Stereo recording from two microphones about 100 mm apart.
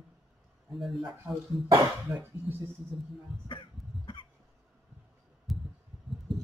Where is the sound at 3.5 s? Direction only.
55° left (ahead or behind).